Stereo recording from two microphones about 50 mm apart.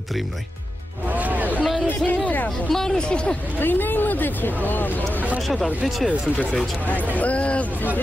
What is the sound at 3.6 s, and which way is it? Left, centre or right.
Speech, left.